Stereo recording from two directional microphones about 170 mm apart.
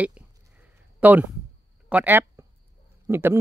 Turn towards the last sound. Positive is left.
turn(degrees=-15)  # may be behind; listen again after turning